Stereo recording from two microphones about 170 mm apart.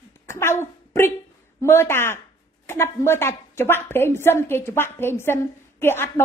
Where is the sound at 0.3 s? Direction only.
15° left (ahead or behind).